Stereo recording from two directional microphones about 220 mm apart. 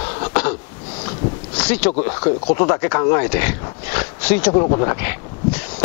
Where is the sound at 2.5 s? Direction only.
15° left (ahead or behind).